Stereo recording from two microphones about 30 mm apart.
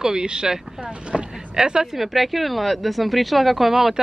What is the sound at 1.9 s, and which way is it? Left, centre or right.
Speech, centre.